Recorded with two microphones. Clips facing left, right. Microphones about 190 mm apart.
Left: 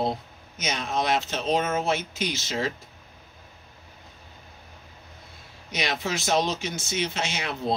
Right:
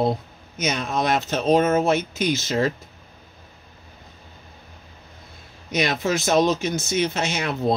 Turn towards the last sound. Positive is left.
turn(degrees=-45)  # may be behind; listen again after turning